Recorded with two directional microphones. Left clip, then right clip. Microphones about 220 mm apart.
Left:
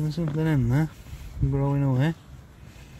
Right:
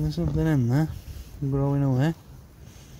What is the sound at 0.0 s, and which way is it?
Speech, centre (ahead or behind).